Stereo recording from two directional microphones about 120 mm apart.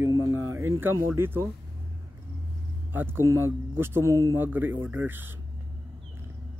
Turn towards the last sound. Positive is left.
turn(degrees=-15)  # may be behind; listen again after turning